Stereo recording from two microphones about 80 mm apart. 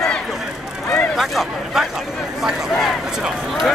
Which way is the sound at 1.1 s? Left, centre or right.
Centre.